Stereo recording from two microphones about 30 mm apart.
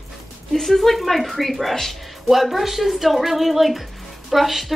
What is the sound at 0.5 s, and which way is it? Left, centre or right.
A woman's voice, centre.